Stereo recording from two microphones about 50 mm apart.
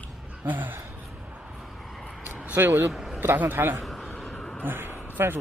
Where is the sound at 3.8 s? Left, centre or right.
Centre.